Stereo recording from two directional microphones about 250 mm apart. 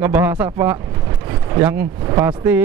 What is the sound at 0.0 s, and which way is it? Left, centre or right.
Speech, centre.